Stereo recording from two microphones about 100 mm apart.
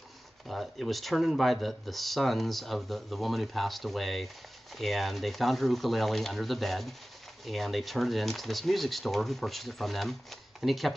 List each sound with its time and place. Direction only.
0.5 s speech: centre (ahead or behind)